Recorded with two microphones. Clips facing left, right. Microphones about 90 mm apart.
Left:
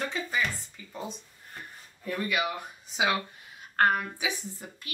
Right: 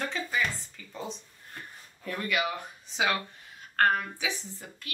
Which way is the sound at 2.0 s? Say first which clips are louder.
Left 1 dB; 5° left (ahead or behind).